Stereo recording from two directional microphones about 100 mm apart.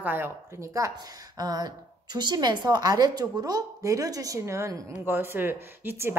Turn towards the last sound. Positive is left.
turn(degrees=-25)  # may be behind; listen again after turning